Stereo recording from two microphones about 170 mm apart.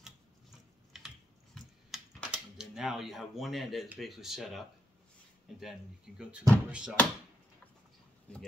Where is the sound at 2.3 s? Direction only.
5° right (ahead or behind).